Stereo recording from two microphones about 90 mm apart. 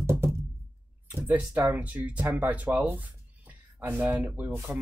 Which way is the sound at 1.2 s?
20° right (ahead or behind).